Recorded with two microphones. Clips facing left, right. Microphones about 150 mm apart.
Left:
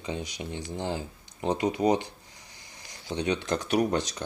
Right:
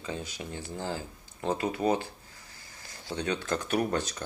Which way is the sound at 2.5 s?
15° left (ahead or behind).